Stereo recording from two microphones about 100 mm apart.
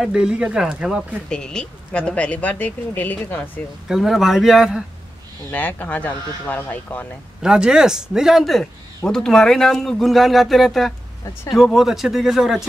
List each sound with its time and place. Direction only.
0.0 s speech: 10° right (ahead or behind)
1.3 s speech: 5° left (ahead or behind)
3.9 s speech: centre (ahead or behind)
5.5 s speech: 15° left (ahead or behind)
7.4 s speech: 5° right (ahead or behind)